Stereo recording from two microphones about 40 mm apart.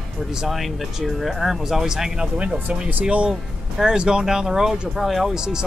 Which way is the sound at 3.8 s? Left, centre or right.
Centre.